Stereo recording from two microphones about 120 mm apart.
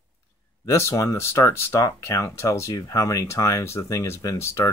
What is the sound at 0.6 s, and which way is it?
Speech, 25° left (ahead or behind).